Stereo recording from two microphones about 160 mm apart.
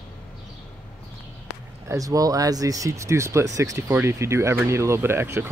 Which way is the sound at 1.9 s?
20° right (ahead or behind).